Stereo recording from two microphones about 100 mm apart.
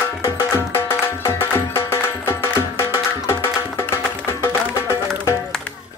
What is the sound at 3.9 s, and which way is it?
Music, 25° left (ahead or behind).